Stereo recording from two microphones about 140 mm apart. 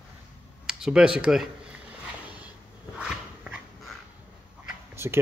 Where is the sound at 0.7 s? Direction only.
5° right (ahead or behind).